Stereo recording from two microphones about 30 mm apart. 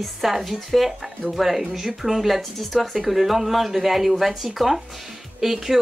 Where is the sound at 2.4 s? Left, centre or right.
Centre.